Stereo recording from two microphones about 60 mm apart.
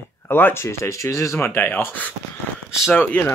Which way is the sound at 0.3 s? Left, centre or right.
Left.